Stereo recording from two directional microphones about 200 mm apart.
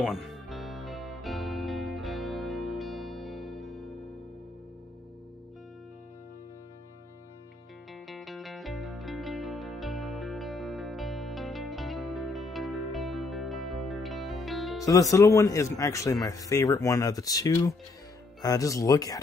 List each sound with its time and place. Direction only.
0.0 s music: centre (ahead or behind)
8.1 s music: centre (ahead or behind)
14.8 s speech: 15° left (ahead or behind)